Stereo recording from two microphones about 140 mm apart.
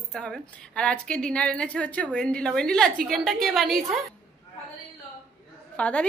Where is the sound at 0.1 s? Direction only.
5° left (ahead or behind).